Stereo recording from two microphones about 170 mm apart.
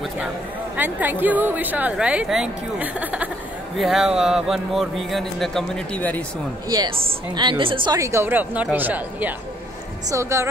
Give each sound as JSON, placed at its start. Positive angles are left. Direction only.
{"t": 0.7, "sound": "a woman's voice", "side_deg": -10}
{"t": 7.3, "sound": "a woman's voice", "side_deg": -30}